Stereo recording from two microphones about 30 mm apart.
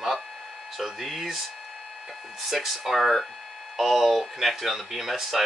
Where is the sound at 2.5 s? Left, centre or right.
Centre.